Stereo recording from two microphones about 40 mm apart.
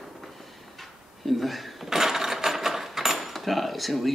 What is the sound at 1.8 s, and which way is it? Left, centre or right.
Mechanisms, centre.